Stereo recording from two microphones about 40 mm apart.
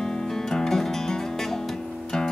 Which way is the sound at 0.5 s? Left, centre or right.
Centre.